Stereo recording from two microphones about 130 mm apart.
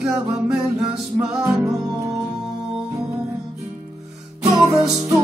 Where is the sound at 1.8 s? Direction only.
30° right (ahead or behind).